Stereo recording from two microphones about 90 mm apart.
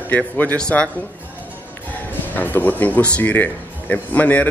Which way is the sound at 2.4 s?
20° left (ahead or behind).